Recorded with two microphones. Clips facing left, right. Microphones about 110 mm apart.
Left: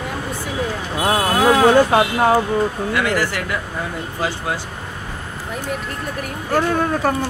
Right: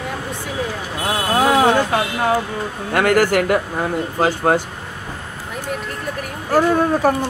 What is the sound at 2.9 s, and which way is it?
Speech, 50° right (ahead or behind).